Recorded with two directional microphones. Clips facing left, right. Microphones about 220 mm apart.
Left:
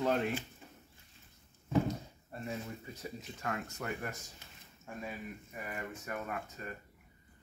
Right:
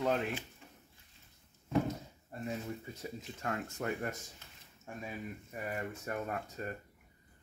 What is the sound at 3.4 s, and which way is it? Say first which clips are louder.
Speech: right 1 dB; 30° right (ahead or behind).